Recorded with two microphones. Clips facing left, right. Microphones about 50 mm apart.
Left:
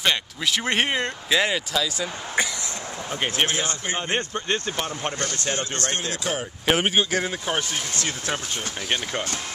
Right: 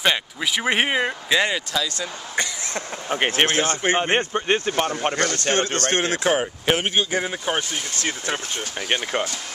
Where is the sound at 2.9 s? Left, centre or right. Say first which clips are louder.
Right 6 dB; right.